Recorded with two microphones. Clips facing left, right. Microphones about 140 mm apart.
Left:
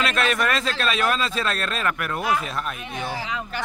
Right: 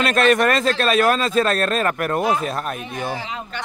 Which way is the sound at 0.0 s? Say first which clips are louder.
Right 7 dB; 45° right (ahead or behind).